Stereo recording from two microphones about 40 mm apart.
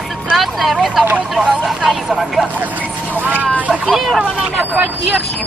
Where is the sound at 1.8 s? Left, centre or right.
Centre.